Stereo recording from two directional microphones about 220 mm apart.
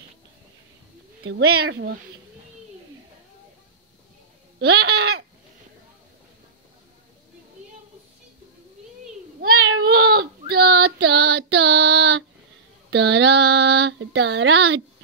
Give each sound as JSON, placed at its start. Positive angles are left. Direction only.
{"t": 1.4, "sound": "speech", "side_deg": -50}
{"t": 4.6, "sound": "speech", "side_deg": -50}
{"t": 9.5, "sound": "a sound", "side_deg": -70}
{"t": 10.5, "sound": "child singing", "side_deg": -50}
{"t": 10.8, "sound": "female singing", "side_deg": -55}
{"t": 12.9, "sound": "speech", "side_deg": -50}